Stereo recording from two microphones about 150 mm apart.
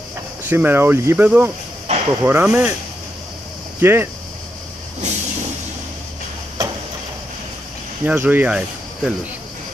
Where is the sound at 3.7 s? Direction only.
15° right (ahead or behind).